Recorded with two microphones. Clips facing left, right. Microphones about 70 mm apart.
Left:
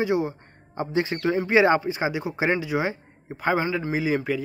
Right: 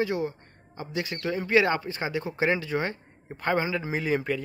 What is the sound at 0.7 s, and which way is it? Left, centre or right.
A man's voice, left.